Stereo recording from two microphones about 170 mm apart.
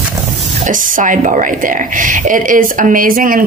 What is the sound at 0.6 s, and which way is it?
Speech, 50° right (ahead or behind).